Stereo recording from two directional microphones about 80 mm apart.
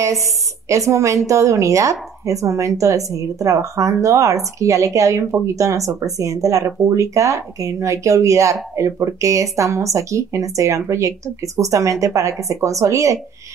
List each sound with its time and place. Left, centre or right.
0.0 s speech: right